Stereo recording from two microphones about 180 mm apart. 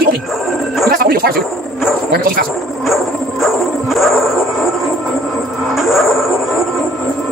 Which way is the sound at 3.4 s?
Centre (ahead or behind).